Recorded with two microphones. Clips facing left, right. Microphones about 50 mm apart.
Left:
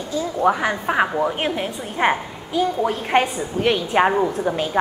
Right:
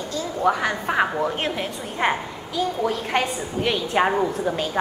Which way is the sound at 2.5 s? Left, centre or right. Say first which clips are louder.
Left 3 dB; left.